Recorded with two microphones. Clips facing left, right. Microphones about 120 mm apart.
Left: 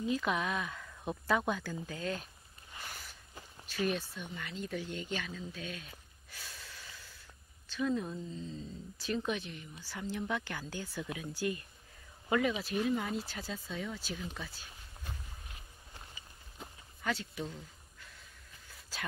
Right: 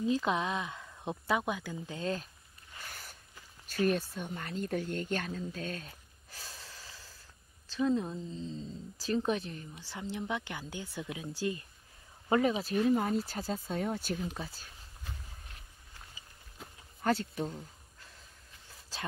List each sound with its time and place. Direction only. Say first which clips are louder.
0.0 s speech: right 3 dB; 30° right (ahead or behind)
1.9 s a woman's voice: right 4 dB; 30° right (ahead or behind)
3.6 s speech: right 4 dB; 50° right (ahead or behind)
5.9 s gasp: right 1 dB; 30° right (ahead or behind)
7.7 s a woman's voice: right 3 dB; 25° right (ahead or behind)
13.3 s speech: right 6 dB; 45° right (ahead or behind)
14.4 s speech: right 4 dB; 30° right (ahead or behind)
16.6 s a sound: left 1 dB; centre (ahead or behind)
17.0 s speech: right 6 dB; 50° right (ahead or behind)
17.5 s a sound: right 3 dB; 30° right (ahead or behind)